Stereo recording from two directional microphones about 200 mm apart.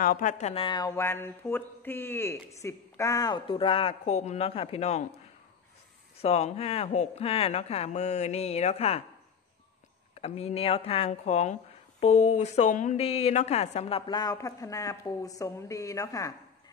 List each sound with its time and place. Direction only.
0.0 s speech: 40° left (ahead or behind)
6.1 s speech: 30° left (ahead or behind)
10.1 s speech: 30° left (ahead or behind)